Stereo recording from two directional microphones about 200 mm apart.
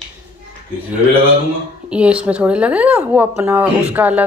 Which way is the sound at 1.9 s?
5° right (ahead or behind).